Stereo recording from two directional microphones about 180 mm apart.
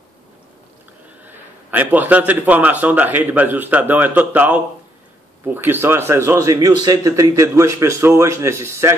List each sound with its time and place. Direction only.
1.2 s a man's voice: 10° right (ahead or behind)